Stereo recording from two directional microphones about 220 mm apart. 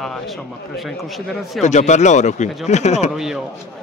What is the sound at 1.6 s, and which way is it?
A man's voice, 30° left (ahead or behind).